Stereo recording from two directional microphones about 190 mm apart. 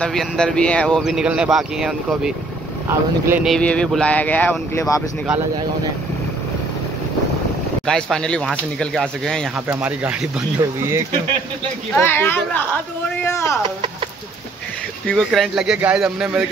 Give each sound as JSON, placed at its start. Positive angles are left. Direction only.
{"t": 0.0, "sound": "speech", "side_deg": 5}
{"t": 3.5, "sound": "speech", "side_deg": 5}
{"t": 7.8, "sound": "speech", "side_deg": 5}
{"t": 10.6, "sound": "speech", "side_deg": -15}
{"t": 11.9, "sound": "speech", "side_deg": 10}
{"t": 15.0, "sound": "speech", "side_deg": 0}